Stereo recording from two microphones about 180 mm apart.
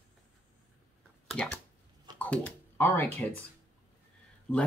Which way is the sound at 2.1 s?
10° left (ahead or behind).